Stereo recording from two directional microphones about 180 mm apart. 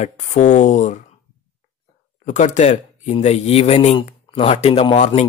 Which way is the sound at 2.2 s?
40° left (ahead or behind).